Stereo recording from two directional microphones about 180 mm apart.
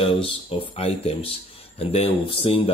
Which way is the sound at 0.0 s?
30° left (ahead or behind).